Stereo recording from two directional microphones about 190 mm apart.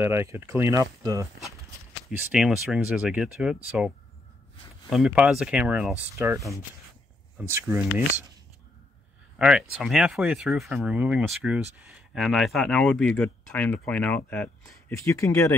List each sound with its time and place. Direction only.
0.0 s speech: 15° right (ahead or behind)
2.0 s speech: centre (ahead or behind)
9.4 s speech: 5° right (ahead or behind); by 15.5 s 15° left (ahead or behind)